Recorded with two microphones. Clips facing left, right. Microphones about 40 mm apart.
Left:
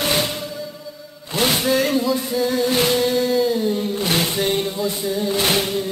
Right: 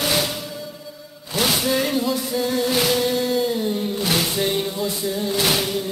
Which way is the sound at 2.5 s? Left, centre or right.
Centre.